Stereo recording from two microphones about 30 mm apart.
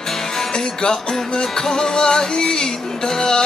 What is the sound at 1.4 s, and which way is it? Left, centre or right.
Music, centre.